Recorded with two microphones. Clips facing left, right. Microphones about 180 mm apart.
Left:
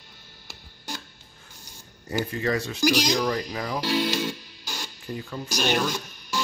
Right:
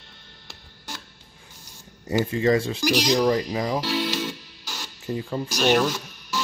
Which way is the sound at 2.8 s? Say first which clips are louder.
Right 1 dB; centre (ahead or behind).